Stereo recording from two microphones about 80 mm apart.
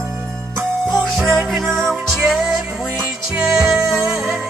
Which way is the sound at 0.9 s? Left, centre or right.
Centre.